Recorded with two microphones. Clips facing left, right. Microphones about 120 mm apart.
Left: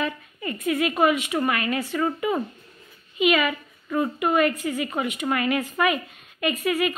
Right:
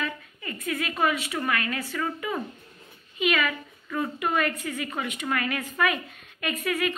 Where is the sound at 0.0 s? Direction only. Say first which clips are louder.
Left 5 dB; 20° left (ahead or behind).